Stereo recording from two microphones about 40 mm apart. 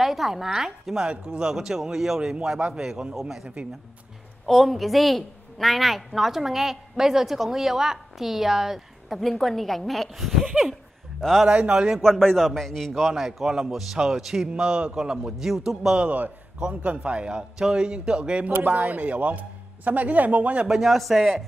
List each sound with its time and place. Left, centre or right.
0.0 s a woman's voice: centre
1.0 s a man's voice: right
2.6 s speech: right
3.2 s a woman's voice: centre
4.5 s a woman's voice: centre
9.2 s a woman's voice: centre
11.4 s speech: right
12.0 s a man's voice: centre
13.5 s a man's voice: centre
14.5 s a man's voice: right; by 16.0 s centre
16.0 s a man's voice: right
18.8 s a man's voice: right
20.6 s a woman's voice: centre